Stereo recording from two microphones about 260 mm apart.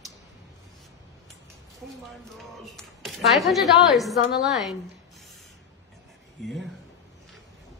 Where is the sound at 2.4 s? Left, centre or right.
Centre.